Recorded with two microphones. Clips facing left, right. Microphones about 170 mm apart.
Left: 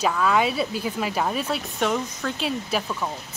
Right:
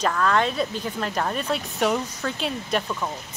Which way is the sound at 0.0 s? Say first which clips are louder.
Left 1 dB; 5° left (ahead or behind).